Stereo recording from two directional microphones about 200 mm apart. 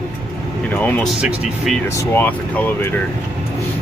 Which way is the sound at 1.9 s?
15° left (ahead or behind).